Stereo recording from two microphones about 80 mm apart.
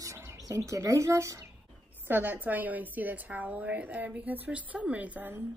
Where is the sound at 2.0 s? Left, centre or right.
Right.